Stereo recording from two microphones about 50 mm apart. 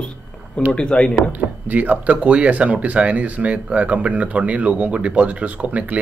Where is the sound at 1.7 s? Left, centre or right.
Right.